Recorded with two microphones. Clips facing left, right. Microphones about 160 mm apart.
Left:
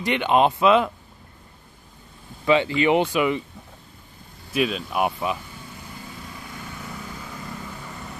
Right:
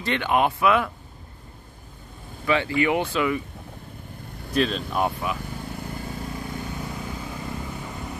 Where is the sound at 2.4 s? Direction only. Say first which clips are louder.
Left 3 dB; 20° left (ahead or behind).